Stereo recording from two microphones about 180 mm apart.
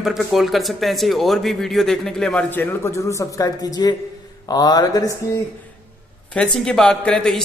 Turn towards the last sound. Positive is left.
turn(degrees=5)  # may be behind; listen again after turning